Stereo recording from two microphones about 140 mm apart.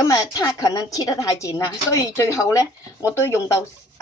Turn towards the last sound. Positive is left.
turn(degrees=20)  # may be behind; listen again after turning